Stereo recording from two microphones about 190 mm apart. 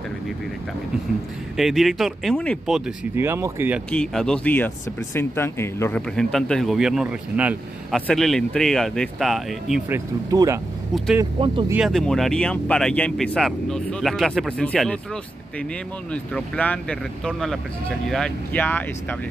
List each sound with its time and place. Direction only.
1.6 s speech: centre (ahead or behind)
3.2 s speech: 15° right (ahead or behind)
3.9 s speech: 5° left (ahead or behind)
9.8 s speech: 15° right (ahead or behind)
11.4 s speech: 30° right (ahead or behind)
11.7 s speech: centre (ahead or behind)
16.1 s speech: 5° left (ahead or behind)